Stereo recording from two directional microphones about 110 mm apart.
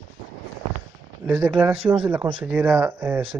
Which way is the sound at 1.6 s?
15° right (ahead or behind).